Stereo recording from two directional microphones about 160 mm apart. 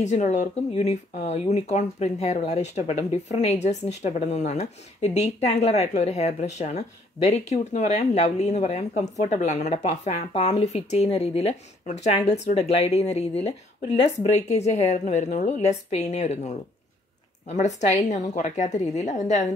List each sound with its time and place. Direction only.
0.0 s speech: 45° left (ahead or behind)